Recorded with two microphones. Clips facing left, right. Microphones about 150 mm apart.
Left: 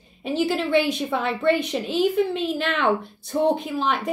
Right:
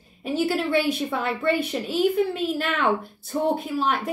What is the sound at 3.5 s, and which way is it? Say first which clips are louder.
Speech: even; 5° right (ahead or behind).